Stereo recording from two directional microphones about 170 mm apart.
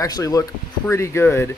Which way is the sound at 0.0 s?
20° left (ahead or behind).